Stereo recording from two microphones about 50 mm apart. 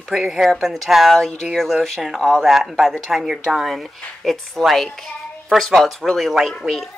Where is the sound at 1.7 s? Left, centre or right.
Centre.